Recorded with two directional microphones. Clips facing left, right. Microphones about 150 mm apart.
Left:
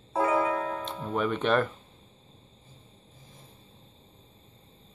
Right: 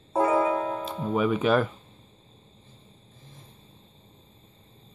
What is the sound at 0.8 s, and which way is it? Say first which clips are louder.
Speech: right 4 dB; 5° right (ahead or behind).